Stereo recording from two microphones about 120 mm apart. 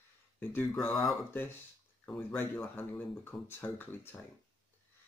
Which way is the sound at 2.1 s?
15° left (ahead or behind).